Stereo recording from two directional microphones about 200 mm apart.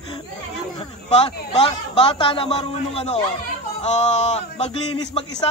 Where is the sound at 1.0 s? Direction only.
30° left (ahead or behind).